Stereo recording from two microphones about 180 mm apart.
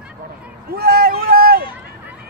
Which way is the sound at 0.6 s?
55° right (ahead or behind).